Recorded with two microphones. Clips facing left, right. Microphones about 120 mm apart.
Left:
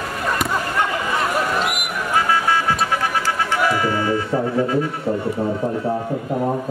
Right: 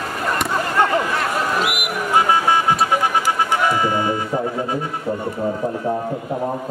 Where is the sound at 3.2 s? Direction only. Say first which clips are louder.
Right 1 dB; 15° right (ahead or behind).